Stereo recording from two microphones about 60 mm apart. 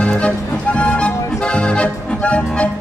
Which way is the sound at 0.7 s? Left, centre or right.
Centre.